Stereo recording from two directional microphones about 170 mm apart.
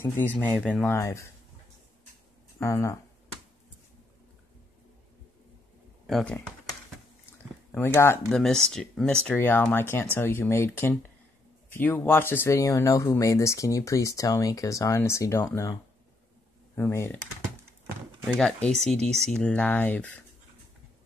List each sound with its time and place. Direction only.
0.2 s speech: 10° left (ahead or behind)
2.6 s speech: 20° left (ahead or behind)
6.0 s speech: 5° left (ahead or behind)
7.7 s speech: 15° left (ahead or behind)
8.3 s speech: 5° left (ahead or behind)
18.2 s speech: centre (ahead or behind)